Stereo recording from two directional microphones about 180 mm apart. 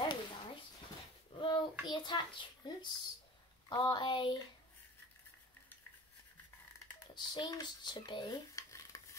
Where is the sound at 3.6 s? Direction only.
25° left (ahead or behind).